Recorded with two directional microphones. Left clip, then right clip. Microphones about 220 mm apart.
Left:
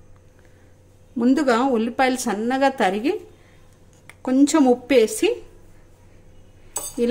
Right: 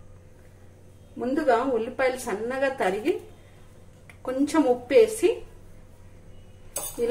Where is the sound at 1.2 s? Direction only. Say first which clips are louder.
Left 4 dB; 45° left (ahead or behind).